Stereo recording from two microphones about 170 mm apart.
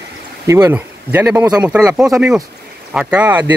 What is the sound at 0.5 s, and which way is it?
Speech, 15° right (ahead or behind).